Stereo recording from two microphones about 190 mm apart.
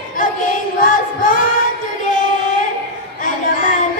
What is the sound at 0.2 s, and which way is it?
Music, 45° left (ahead or behind).